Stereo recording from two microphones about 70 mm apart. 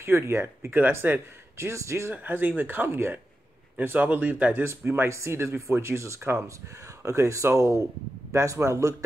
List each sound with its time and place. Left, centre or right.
0.0 s speech: right
0.7 s speech: right
2.1 s speech: right
4.6 s speech: right